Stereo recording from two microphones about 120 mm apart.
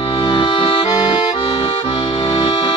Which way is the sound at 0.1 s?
50° left (ahead or behind).